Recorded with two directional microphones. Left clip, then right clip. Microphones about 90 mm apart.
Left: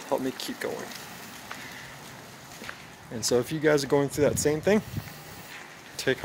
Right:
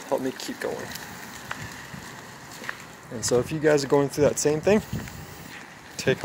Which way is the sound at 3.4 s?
35° left (ahead or behind).